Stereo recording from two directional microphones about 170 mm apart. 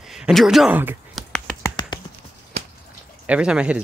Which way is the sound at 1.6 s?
25° left (ahead or behind).